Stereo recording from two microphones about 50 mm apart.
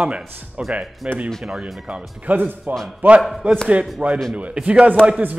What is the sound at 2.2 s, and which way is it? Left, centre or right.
Speech, right.